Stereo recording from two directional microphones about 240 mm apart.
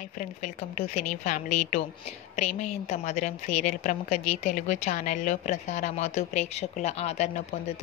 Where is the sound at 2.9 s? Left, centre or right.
Left.